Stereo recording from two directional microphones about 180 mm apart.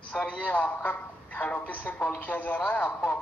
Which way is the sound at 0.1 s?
5° left (ahead or behind).